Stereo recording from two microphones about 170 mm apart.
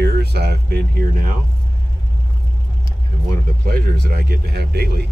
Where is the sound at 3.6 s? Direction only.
70° right (ahead or behind).